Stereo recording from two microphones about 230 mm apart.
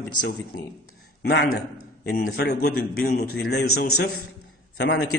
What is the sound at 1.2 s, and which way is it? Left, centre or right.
A man's voice, left.